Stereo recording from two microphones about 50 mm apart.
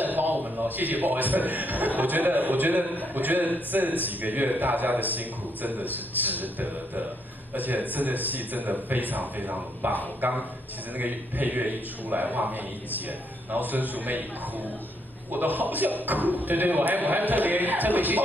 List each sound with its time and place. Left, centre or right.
0.0 s a sound: right
0.7 s speech: right
13.7 s speech: right
15.3 s speech: right